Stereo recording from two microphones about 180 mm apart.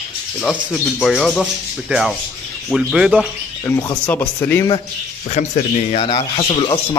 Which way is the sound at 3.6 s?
15° left (ahead or behind).